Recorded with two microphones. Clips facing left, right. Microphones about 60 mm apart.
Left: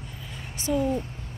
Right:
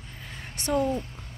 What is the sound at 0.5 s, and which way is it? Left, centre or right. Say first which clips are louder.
Speech: even; right.